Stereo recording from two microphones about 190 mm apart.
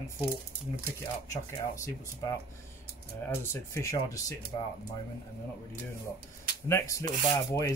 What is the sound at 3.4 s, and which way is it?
Speech, 15° left (ahead or behind).